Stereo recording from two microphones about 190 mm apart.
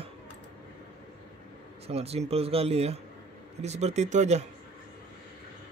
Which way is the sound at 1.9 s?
35° right (ahead or behind).